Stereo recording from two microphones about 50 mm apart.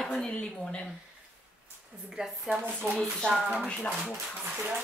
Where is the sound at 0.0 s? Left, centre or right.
Centre.